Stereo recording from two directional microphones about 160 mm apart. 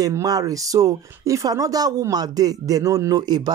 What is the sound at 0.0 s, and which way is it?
Speech, 20° right (ahead or behind).